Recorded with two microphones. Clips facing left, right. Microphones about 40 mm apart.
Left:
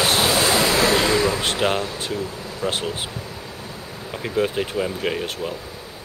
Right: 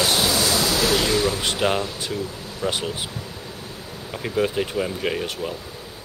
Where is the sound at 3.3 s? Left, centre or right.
Centre.